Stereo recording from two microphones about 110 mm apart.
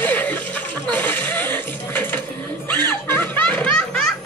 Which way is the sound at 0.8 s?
15° left (ahead or behind).